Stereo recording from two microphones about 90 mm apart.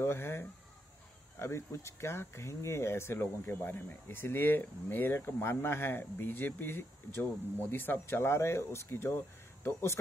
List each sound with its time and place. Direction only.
0.0 s speech: 25° left (ahead or behind)